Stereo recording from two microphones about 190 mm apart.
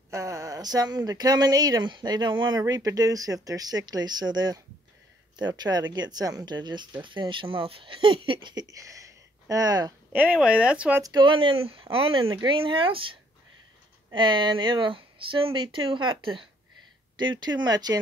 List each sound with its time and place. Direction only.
0.1 s speech: 15° right (ahead or behind)
10.1 s speech: 5° right (ahead or behind)
11.0 s speech: 20° right (ahead or behind)
17.6 s speech: 20° right (ahead or behind)